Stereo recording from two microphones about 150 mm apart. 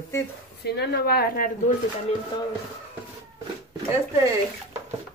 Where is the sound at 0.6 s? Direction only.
90° left.